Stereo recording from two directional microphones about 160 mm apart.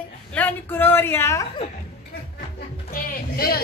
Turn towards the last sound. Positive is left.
turn(degrees=70)  # may be behind; listen again after turning